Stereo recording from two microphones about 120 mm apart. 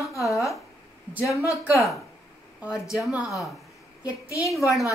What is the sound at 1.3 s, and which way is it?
Speech, 25° left (ahead or behind).